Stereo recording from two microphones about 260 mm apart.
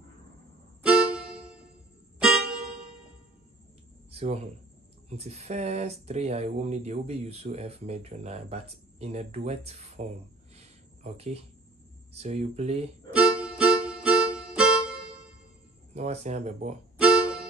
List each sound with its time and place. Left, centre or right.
0.8 s music: centre
4.1 s speech: right
12.1 s speech: right
13.1 s music: centre
15.9 s speech: right
16.9 s music: centre